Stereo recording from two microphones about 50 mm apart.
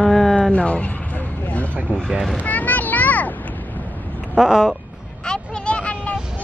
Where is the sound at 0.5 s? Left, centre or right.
Left.